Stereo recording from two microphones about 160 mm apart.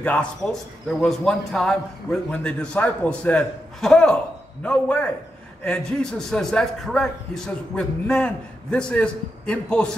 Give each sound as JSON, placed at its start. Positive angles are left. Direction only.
{"t": 0.0, "sound": "a man's voice", "side_deg": 5}